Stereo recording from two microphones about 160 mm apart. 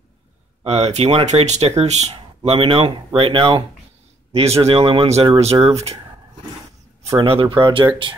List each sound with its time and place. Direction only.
0.7 s speech: 40° right (ahead or behind)
7.0 s a sound: 20° right (ahead or behind)
7.2 s speech: 35° right (ahead or behind)